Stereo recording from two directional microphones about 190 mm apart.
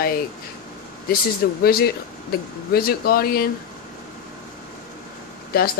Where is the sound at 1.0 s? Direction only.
50° left (ahead or behind).